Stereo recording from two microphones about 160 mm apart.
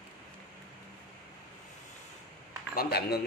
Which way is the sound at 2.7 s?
75° left (ahead or behind).